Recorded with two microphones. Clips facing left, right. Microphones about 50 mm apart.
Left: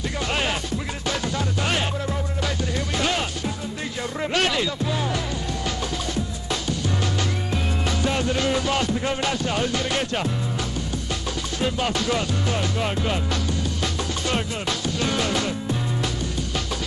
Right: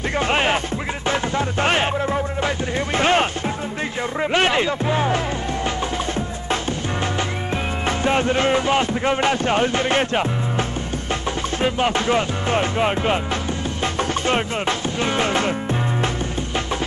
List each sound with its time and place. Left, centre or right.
0.3 s music: right
3.0 s music: right
8.0 s music: right
11.6 s music: right
14.2 s music: right